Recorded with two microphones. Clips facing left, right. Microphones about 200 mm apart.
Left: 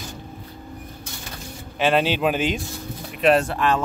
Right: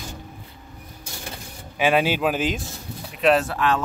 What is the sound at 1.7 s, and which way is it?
A man's voice, 10° right (ahead or behind).